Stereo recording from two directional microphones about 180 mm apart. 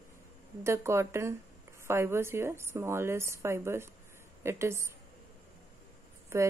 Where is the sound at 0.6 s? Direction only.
15° right (ahead or behind).